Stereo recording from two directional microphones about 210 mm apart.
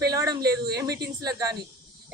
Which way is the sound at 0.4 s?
50° right (ahead or behind).